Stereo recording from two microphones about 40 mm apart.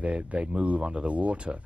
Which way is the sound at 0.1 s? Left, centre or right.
Right.